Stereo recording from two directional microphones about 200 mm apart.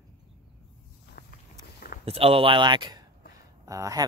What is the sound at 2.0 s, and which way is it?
Speech, 30° right (ahead or behind).